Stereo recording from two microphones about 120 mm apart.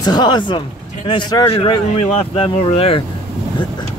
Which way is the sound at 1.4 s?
55° left (ahead or behind).